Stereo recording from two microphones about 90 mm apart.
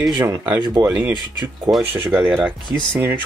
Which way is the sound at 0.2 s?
20° right (ahead or behind).